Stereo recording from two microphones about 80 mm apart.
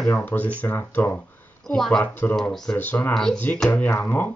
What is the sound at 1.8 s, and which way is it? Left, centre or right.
Speech, centre.